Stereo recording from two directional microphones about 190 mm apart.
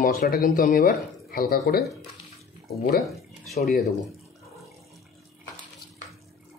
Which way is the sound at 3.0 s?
Centre (ahead or behind).